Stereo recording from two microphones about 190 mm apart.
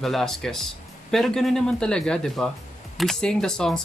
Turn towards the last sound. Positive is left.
turn(degrees=5)  # may be behind; listen again after turning